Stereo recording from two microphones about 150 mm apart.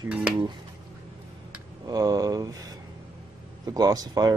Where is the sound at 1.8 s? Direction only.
25° right (ahead or behind).